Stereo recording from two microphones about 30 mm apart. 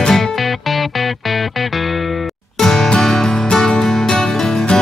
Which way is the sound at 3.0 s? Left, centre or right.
Left.